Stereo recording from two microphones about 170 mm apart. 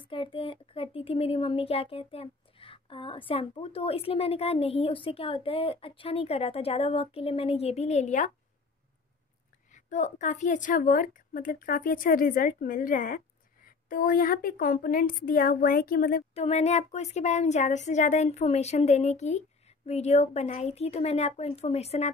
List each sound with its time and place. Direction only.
0.1 s speech: 30° left (ahead or behind)
9.8 s a woman's voice: 45° left (ahead or behind)
16.3 s speech: 40° left (ahead or behind)